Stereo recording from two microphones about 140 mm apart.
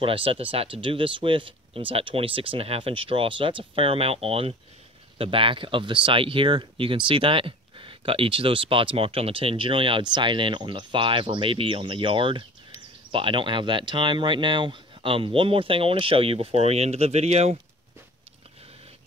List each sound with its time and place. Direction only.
0.0 s speech: 40° right (ahead or behind)